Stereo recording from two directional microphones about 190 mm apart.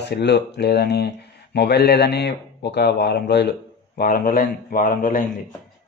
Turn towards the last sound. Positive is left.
turn(degrees=50)  # may be behind; listen again after turning